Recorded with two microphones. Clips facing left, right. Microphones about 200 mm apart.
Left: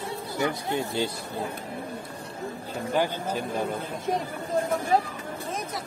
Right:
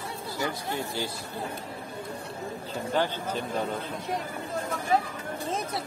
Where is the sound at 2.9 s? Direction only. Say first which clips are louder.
Left 2 dB; 10° left (ahead or behind).